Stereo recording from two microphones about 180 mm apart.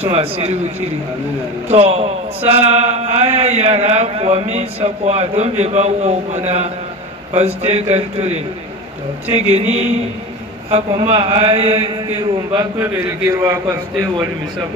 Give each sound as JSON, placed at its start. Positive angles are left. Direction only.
{"t": 0.1, "sound": "a man's voice", "side_deg": -35}
{"t": 1.7, "sound": "a man's voice", "side_deg": -35}
{"t": 10.7, "sound": "mantra", "side_deg": -25}
{"t": 11.7, "sound": "a man's voice", "side_deg": -20}